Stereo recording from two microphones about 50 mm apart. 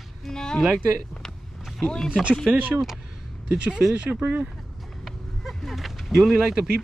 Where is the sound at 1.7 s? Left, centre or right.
Centre.